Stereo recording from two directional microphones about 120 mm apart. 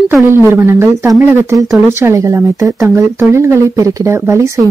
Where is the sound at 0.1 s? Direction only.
20° right (ahead or behind).